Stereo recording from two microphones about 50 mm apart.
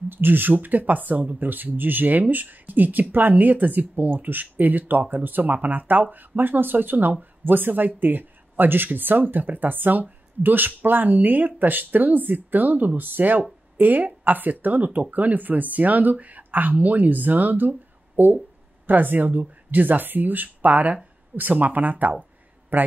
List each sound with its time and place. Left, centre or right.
0.1 s speech: right